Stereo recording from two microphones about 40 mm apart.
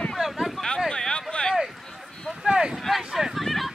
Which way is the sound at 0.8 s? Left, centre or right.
Centre.